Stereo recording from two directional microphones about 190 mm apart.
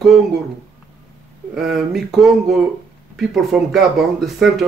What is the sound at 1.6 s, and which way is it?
Speech, centre (ahead or behind).